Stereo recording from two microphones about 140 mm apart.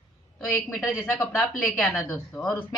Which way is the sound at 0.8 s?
20° left (ahead or behind).